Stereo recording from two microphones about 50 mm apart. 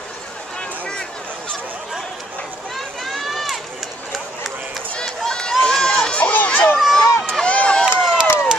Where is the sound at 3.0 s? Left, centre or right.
Centre.